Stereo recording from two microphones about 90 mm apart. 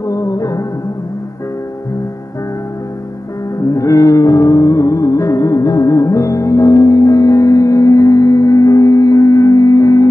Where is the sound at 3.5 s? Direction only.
35° left (ahead or behind).